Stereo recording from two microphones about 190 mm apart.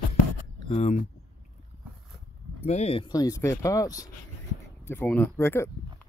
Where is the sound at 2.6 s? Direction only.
35° left (ahead or behind); by 5.7 s 10° left (ahead or behind).